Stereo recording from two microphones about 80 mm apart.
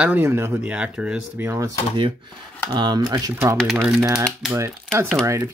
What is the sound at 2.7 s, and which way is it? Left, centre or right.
Speech, right.